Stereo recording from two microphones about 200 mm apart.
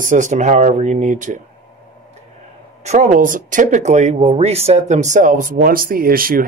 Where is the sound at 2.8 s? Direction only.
35° right (ahead or behind).